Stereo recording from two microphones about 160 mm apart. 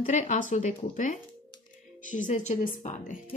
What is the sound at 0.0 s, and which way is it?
A woman's voice, 50° left (ahead or behind).